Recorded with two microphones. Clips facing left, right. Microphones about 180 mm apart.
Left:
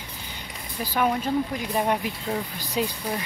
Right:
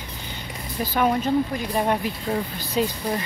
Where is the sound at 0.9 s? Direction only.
5° left (ahead or behind).